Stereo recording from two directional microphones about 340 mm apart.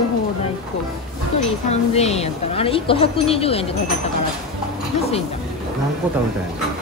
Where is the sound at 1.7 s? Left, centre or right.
Centre.